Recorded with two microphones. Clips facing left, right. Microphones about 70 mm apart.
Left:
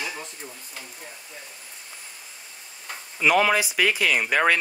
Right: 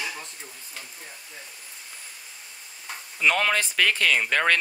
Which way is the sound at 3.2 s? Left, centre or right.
Centre.